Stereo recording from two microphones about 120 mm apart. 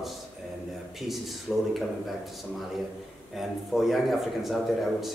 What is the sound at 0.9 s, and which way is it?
Speech, centre (ahead or behind).